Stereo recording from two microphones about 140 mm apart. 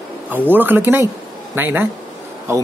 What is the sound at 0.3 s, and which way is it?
Speech, 15° right (ahead or behind).